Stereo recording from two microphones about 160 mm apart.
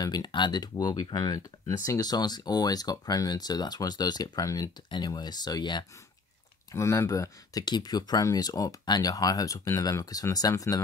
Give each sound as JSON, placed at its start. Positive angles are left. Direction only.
{"t": 0.0, "sound": "speech", "side_deg": 25}